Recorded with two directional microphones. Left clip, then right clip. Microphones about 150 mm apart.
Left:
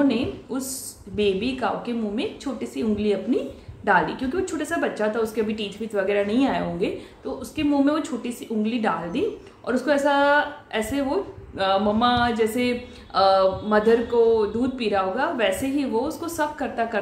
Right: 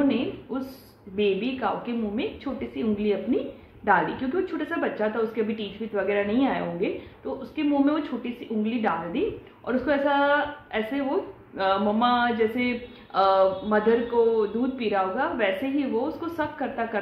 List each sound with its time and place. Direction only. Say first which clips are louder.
0.1 s a woman's voice: left 2 dB; 15° left (ahead or behind)